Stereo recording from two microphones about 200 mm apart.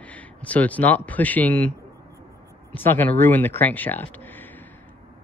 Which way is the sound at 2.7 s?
10° left (ahead or behind).